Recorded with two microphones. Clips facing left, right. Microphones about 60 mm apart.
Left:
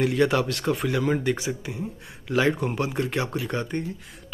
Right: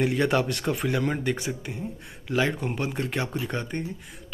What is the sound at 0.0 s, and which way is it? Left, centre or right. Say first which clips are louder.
Speech: left 2 dB; centre.